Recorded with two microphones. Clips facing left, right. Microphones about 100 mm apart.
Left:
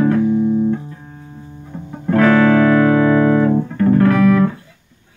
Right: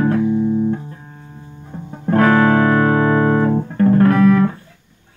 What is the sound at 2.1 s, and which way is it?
Music, 35° right (ahead or behind).